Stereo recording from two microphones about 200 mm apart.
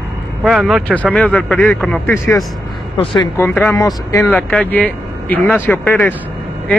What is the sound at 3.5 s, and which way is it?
Speech, 5° left (ahead or behind).